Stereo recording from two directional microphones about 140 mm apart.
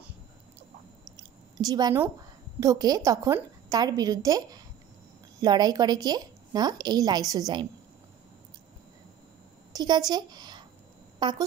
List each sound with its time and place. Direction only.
1.1 s a sound: 30° right (ahead or behind)
2.6 s a woman's voice: 25° right (ahead or behind)
9.7 s a woman's voice: 30° right (ahead or behind)